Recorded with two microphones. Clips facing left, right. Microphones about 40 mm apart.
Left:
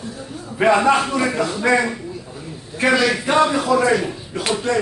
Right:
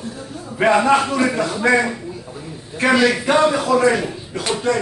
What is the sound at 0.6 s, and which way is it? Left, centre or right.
A man's voice, centre.